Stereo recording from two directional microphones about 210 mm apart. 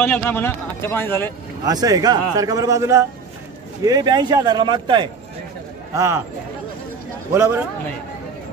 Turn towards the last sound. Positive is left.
turn(degrees=-10)  # may be behind; listen again after turning